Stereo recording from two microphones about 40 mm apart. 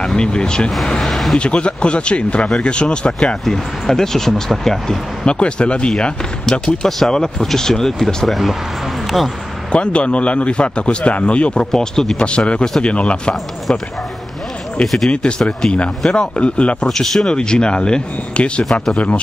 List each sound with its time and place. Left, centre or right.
0.0 s speech: left
1.0 s speech: centre
1.3 s speech: left
3.4 s speech: centre
5.2 s speech: left
8.3 s speech: centre
9.7 s a man's voice: left
11.7 s speech: centre; by 13.3 s left
15.0 s speech: left
16.8 s speech: centre; by 18.7 s left